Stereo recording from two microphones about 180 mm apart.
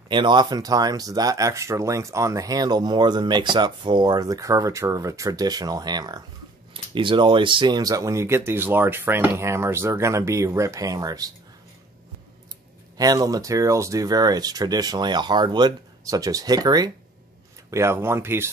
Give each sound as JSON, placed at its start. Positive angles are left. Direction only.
{"t": 0.1, "sound": "speech", "side_deg": -25}
{"t": 12.9, "sound": "speech", "side_deg": -20}